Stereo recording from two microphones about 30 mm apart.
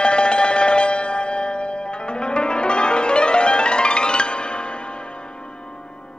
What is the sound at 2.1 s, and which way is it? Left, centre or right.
Music, left.